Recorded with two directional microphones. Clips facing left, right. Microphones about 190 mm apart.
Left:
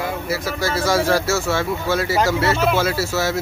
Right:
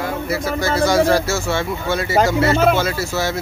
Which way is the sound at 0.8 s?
Centre (ahead or behind).